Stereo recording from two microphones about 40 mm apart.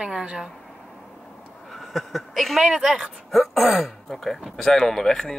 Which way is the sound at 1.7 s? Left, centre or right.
Centre.